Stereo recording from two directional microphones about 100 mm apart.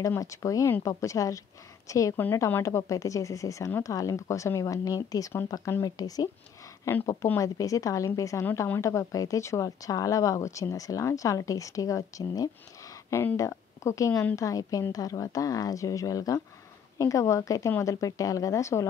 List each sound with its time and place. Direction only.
0.2 s speech: 35° left (ahead or behind)
6.9 s speech: 25° left (ahead or behind)
13.1 s speech: 25° left (ahead or behind)